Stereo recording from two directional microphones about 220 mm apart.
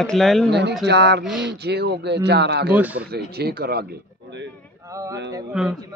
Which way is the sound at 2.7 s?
5° right (ahead or behind).